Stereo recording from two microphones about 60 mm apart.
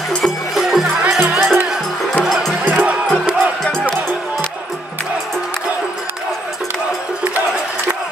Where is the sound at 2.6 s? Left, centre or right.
Right.